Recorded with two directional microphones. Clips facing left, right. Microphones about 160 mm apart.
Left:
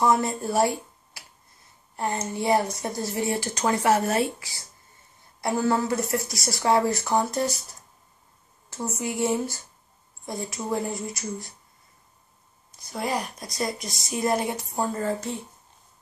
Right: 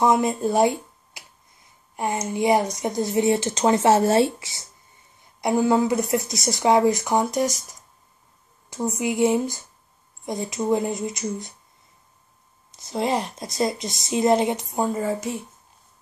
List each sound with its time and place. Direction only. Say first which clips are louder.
0.0 s speech: right 3 dB; 20° right (ahead or behind)
12.7 s speech: right 5 dB; 20° right (ahead or behind)